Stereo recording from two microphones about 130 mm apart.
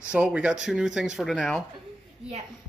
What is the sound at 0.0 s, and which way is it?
Speech, 10° right (ahead or behind).